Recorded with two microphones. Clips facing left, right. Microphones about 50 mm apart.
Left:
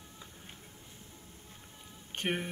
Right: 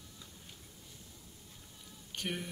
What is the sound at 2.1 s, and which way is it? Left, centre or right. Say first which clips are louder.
Speech: left 5 dB; left.